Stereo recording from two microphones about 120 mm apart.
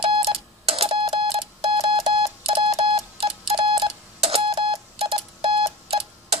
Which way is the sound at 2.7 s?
50° right (ahead or behind).